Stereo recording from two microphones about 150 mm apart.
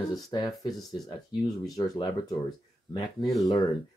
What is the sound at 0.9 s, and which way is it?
Speech, 25° left (ahead or behind).